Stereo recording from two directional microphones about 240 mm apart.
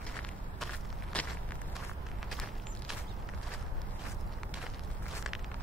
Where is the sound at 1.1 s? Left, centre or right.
Centre.